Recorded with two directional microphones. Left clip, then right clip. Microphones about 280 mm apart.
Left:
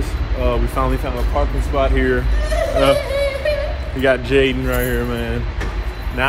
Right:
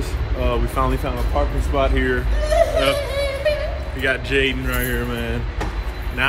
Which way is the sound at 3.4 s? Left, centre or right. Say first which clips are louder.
Right 2 dB; centre.